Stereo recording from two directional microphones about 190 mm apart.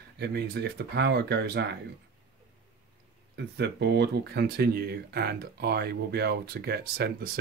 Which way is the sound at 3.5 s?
60° right (ahead or behind).